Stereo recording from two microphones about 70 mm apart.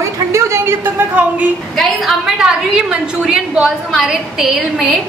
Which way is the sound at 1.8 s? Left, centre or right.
Centre.